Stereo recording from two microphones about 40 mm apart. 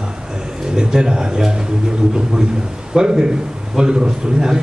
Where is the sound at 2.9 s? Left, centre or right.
Centre.